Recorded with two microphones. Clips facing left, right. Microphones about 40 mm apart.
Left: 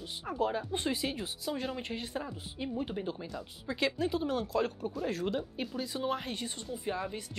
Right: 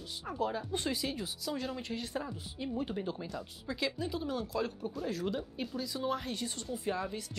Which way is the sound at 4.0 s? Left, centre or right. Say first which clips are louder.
Left 4 dB; left.